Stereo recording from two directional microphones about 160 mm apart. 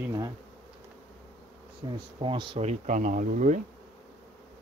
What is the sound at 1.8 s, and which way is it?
Speech, 30° right (ahead or behind).